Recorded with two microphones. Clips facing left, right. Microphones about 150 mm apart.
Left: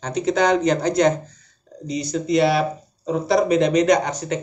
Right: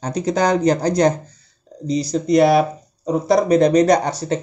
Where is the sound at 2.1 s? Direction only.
40° right (ahead or behind).